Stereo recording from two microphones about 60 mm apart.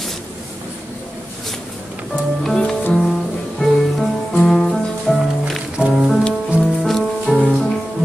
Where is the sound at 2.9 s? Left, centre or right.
Centre.